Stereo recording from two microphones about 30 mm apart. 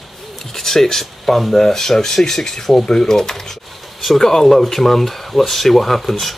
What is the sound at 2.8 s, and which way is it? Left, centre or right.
Speech, left.